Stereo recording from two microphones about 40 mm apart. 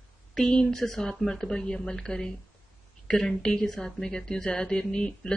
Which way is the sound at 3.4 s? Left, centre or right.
Centre.